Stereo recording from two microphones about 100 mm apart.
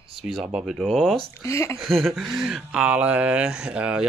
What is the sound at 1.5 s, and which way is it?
Speech, 30° left (ahead or behind).